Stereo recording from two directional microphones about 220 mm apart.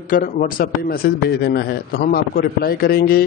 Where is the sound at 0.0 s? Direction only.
40° left (ahead or behind).